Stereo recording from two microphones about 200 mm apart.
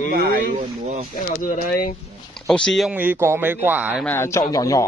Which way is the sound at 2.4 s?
Centre (ahead or behind).